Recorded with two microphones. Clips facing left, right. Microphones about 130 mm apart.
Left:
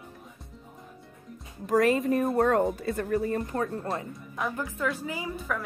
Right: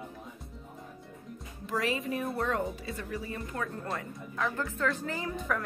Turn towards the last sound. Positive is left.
turn(degrees=5)  # may be behind; listen again after turning